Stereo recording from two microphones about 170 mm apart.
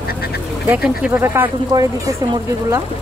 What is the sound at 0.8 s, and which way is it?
Speech, 10° right (ahead or behind).